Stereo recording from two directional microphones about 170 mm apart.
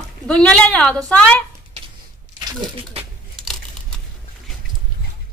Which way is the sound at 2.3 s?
30° right (ahead or behind).